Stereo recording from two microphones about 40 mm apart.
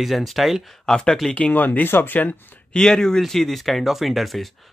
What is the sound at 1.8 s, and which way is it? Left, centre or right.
Speech, left.